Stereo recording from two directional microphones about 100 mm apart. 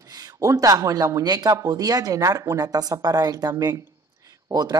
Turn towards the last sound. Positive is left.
turn(degrees=-40)  # may be behind; listen again after turning